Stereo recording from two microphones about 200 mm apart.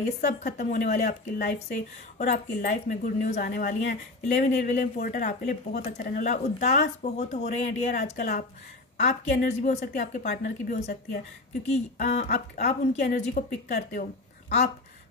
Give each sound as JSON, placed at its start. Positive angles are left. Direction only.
{"t": 0.3, "sound": "a woman's voice", "side_deg": 40}
{"t": 11.7, "sound": "a woman's voice", "side_deg": 35}